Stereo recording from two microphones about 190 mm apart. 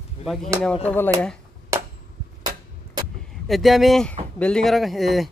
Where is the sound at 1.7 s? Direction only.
15° right (ahead or behind).